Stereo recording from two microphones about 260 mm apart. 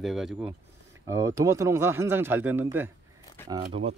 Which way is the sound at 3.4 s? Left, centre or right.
Centre.